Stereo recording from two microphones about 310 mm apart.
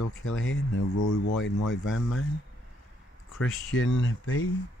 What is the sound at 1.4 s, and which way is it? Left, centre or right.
Speech, left.